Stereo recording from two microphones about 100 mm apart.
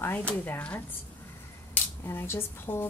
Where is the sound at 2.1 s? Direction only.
25° left (ahead or behind).